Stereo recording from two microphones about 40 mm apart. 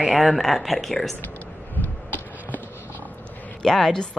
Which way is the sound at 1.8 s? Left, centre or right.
Left.